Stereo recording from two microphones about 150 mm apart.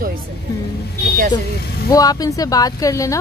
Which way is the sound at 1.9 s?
25° left (ahead or behind).